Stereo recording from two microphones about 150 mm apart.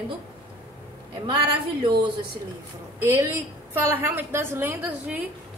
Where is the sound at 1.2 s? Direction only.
35° right (ahead or behind).